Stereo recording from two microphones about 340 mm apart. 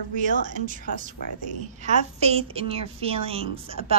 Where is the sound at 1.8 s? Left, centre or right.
Centre.